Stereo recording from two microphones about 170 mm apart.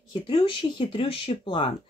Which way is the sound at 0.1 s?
30° left (ahead or behind).